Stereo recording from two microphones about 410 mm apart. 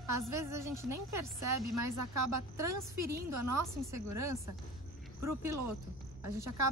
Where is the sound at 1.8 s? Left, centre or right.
Right.